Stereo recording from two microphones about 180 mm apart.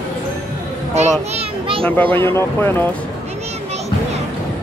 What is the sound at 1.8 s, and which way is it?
Speech, 10° left (ahead or behind).